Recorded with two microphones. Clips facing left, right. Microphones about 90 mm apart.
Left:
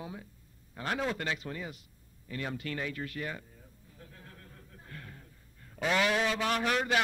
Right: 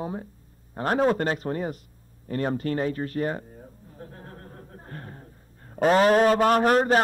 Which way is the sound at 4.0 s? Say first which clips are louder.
Right 10 dB; 40° right (ahead or behind).